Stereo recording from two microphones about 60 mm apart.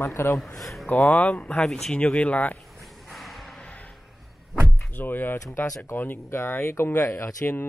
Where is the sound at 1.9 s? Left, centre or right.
Left.